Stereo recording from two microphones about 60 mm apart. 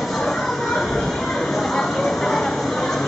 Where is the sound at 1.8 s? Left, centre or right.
Centre.